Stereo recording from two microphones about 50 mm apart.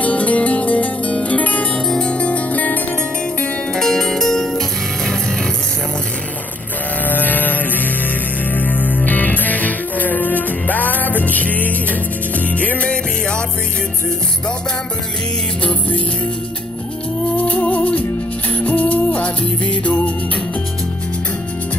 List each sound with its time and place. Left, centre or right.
0.0 s music: left
1.9 s music: centre
3.7 s music: centre
7.1 s music: left
17.4 s music: left